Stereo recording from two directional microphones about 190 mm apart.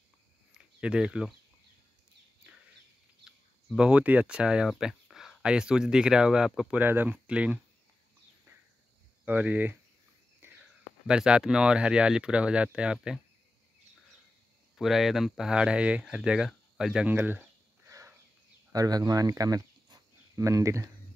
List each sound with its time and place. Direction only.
0.5 s a sound: 5° right (ahead or behind)
3.3 s speech: 5° right (ahead or behind)
9.2 s speech: 10° right (ahead or behind)
10.4 s whispering: 10° right (ahead or behind)
11.1 s speech: 5° right (ahead or behind)
14.8 s speech: centre (ahead or behind); by 20.9 s 15° right (ahead or behind)